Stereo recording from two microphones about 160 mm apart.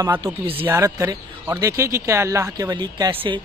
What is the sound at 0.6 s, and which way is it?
Speech, 15° right (ahead or behind).